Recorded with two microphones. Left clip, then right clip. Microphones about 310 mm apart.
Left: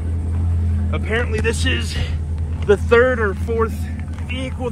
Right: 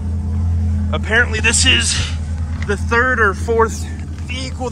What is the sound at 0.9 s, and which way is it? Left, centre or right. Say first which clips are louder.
Speech: right 7 dB; centre.